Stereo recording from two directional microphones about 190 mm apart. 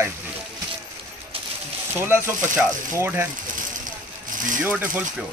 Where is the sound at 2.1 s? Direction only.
10° right (ahead or behind).